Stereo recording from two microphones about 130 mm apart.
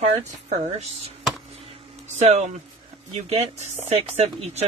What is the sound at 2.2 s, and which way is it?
Speech, 60° right (ahead or behind).